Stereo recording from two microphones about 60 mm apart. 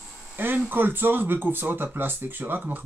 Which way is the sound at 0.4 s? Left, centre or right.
Right.